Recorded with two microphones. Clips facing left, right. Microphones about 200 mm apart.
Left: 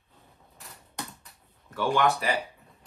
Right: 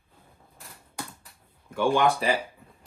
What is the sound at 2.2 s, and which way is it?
Speech, 25° right (ahead or behind).